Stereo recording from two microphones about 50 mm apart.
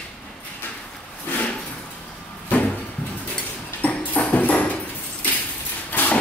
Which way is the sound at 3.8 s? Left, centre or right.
Left.